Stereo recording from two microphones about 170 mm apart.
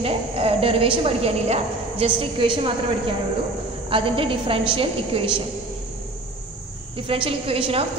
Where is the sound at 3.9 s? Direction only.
30° right (ahead or behind).